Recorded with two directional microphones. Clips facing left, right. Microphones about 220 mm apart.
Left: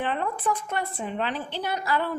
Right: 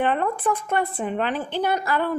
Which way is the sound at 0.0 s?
55° right (ahead or behind).